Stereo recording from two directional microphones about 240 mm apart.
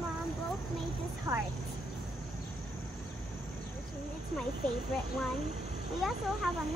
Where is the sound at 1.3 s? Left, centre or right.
Centre.